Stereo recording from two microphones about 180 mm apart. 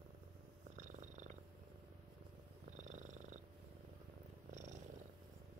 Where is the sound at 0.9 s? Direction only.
40° right (ahead or behind).